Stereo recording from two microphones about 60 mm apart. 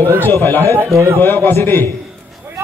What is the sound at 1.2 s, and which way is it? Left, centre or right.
Speech, left.